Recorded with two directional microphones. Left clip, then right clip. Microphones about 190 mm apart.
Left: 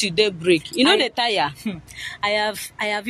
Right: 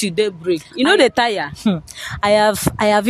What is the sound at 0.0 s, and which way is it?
Speech, 40° right (ahead or behind).